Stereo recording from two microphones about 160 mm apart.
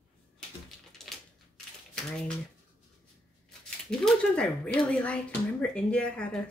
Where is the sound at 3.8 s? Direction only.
5° left (ahead or behind).